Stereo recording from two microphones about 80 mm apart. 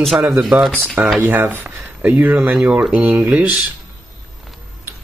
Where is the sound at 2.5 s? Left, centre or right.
Centre.